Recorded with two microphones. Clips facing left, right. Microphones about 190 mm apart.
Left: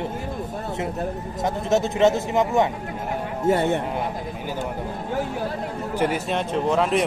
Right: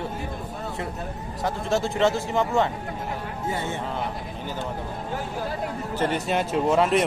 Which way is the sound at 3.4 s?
65° left (ahead or behind).